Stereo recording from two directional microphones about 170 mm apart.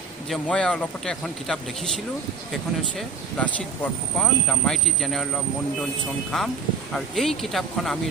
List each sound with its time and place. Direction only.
0.3 s speech: 5° left (ahead or behind)
3.3 s speech: 10° left (ahead or behind)